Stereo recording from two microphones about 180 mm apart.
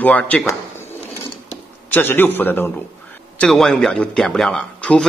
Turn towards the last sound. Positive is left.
turn(degrees=5)  # may be behind; listen again after turning